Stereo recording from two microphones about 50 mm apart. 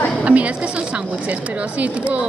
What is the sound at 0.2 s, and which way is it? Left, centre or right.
Speech, right.